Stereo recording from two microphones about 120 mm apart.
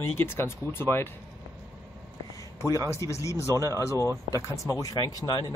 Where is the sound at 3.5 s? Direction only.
25° right (ahead or behind).